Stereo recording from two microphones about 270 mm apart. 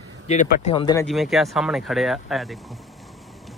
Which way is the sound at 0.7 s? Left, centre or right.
Centre.